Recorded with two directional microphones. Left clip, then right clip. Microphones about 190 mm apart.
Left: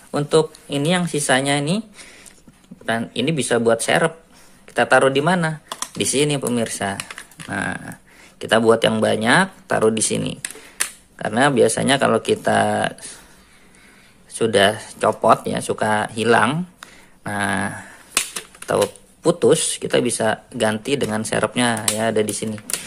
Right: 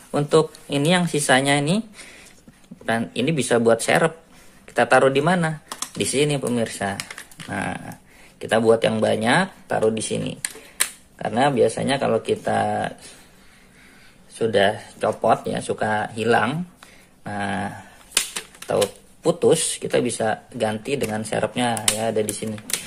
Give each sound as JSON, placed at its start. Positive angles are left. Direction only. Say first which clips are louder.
{"t": 0.1, "sound": "speech", "louder": "left 1 dB", "side_deg": 0}
{"t": 14.4, "sound": "speech", "louder": "left 3 dB", "side_deg": 20}